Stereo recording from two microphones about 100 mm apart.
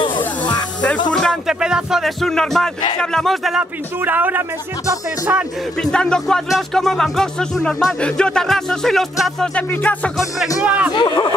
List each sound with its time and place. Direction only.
1.1 s music: 5° left (ahead or behind)
1.5 s speech: 5° right (ahead or behind)
4.0 s speech: 20° right (ahead or behind)
5.8 s speech: 10° left (ahead or behind)
9.7 s music: 15° left (ahead or behind)
10.6 s a man's voice: 15° right (ahead or behind)
11.0 s speech: 45° left (ahead or behind)